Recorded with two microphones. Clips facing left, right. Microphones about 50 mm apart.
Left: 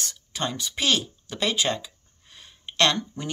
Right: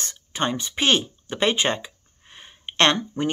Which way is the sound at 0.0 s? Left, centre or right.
Right.